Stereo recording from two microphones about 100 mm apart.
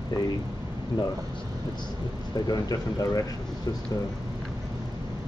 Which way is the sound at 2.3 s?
40° left (ahead or behind).